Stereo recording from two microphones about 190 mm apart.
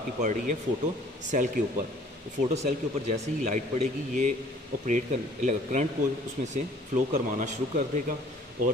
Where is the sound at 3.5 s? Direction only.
40° right (ahead or behind).